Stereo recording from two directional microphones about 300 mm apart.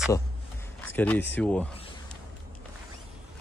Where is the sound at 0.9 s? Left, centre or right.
Centre.